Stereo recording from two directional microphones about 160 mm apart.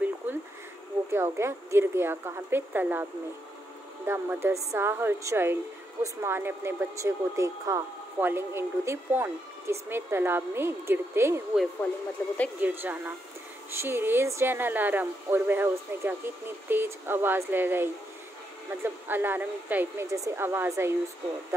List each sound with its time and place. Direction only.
0.2 s a sound: 15° right (ahead or behind)
1.1 s speech: 15° right (ahead or behind)
12.2 s speech: 15° left (ahead or behind)
12.5 s speech: 10° right (ahead or behind)